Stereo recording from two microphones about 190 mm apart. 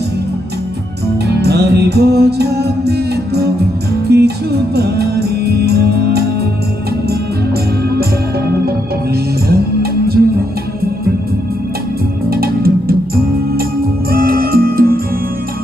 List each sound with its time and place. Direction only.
1.3 s music: 60° right (ahead or behind)
9.5 s music: 55° right (ahead or behind)
12.3 s music: 50° right (ahead or behind)